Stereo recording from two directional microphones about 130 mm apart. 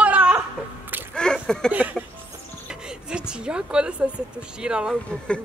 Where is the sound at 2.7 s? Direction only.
5° right (ahead or behind).